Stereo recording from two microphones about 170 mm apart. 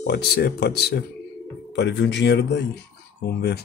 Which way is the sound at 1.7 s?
90° left.